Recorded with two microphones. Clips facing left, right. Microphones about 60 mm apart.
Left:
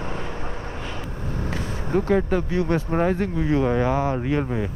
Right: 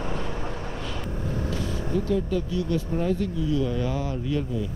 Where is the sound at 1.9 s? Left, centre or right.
Left.